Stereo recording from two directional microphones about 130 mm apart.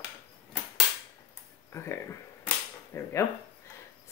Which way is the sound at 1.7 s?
20° left (ahead or behind).